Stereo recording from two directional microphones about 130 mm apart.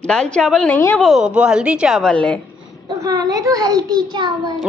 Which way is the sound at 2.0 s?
10° left (ahead or behind).